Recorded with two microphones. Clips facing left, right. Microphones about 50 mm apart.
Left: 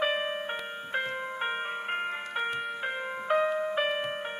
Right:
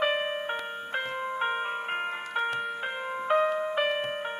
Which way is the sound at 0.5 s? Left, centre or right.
Centre.